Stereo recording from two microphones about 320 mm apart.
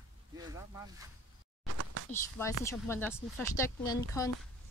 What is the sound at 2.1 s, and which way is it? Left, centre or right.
Speech, centre.